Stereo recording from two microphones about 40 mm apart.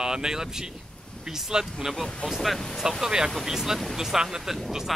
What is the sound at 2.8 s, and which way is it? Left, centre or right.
Speech, centre.